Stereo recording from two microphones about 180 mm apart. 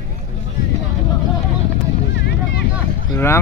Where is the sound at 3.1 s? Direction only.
15° left (ahead or behind).